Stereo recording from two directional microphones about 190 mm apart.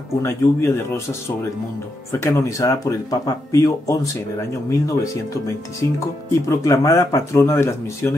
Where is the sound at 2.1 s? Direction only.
15° left (ahead or behind).